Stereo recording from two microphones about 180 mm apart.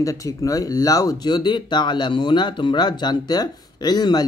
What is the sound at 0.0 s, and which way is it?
Speech, 20° left (ahead or behind).